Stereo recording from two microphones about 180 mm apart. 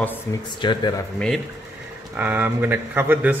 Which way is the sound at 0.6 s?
25° left (ahead or behind).